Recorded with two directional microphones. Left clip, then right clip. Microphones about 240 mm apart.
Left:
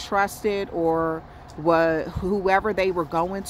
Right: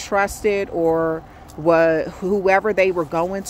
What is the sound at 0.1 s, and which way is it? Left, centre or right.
Speech, right.